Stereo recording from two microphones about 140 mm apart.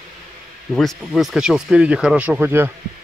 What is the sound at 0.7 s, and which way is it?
Speech, centre (ahead or behind).